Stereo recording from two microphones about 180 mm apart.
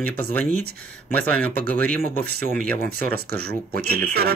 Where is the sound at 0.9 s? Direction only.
10° left (ahead or behind).